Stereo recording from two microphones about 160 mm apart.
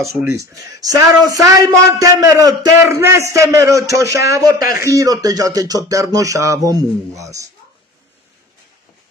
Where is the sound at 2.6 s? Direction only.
15° right (ahead or behind).